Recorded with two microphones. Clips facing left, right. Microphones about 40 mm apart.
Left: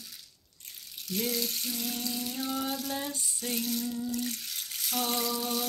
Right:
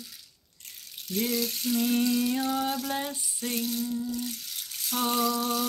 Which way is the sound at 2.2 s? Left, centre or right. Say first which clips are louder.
Right 9 dB; right.